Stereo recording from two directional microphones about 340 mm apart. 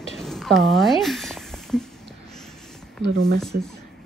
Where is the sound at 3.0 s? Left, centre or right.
Right.